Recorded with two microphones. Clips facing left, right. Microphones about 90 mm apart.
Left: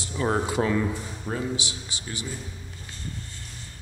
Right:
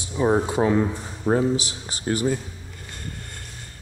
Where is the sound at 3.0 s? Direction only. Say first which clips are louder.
Right 1 dB; 55° right (ahead or behind).